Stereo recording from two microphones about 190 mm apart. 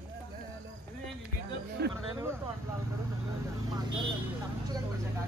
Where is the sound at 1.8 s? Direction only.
60° right (ahead or behind).